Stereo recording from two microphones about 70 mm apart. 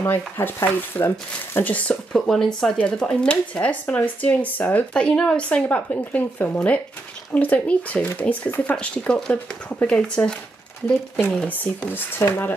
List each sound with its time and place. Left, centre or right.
0.0 s speech: left
2.1 s speech: centre; by 4.8 s left
4.9 s speech: centre
11.4 s speech: left